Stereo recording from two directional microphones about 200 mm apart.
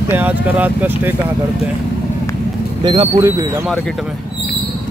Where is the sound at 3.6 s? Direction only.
5° left (ahead or behind).